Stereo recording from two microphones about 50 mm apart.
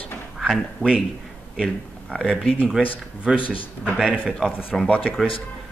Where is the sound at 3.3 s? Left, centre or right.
Centre.